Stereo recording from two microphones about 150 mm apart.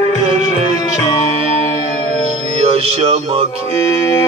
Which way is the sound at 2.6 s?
45° right (ahead or behind).